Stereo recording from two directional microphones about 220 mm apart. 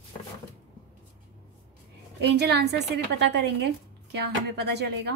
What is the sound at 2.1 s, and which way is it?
A woman's voice, 50° right (ahead or behind).